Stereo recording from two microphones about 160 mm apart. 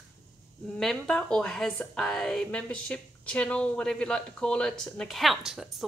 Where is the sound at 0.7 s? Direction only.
5° left (ahead or behind).